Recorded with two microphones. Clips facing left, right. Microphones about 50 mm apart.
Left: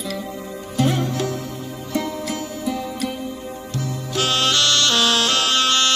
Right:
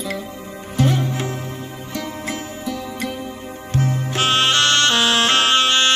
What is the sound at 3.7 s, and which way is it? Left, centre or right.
Music, right.